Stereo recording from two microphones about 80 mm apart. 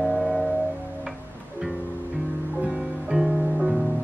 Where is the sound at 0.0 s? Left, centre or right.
Centre.